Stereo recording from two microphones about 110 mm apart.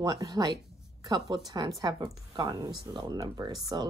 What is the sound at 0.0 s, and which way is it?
Speech, 35° right (ahead or behind).